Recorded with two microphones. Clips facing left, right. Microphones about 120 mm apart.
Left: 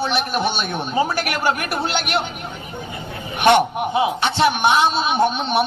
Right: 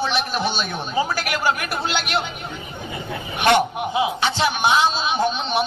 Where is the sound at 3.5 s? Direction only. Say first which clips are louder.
Left 3 dB; 30° left (ahead or behind).